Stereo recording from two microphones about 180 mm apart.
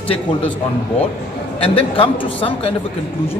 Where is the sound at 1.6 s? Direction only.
30° left (ahead or behind).